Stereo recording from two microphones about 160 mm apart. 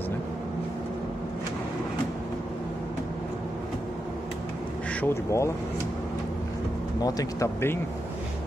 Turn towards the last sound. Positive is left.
turn(degrees=15)  # may be behind; listen again after turning